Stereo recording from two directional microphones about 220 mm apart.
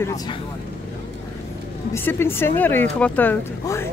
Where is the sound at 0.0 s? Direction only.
15° left (ahead or behind).